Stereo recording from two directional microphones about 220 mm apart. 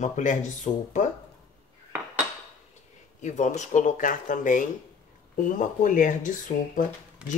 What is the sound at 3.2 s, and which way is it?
Speech, 35° left (ahead or behind).